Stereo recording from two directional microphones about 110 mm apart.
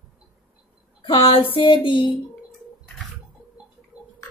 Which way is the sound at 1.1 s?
55° left (ahead or behind).